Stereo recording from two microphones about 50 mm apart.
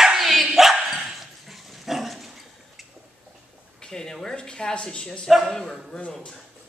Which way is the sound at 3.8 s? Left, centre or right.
Centre.